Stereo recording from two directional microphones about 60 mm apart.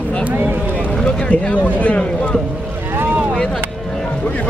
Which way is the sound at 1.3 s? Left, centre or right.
Left.